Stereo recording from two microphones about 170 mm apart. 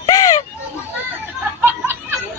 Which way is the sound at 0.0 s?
20° left (ahead or behind).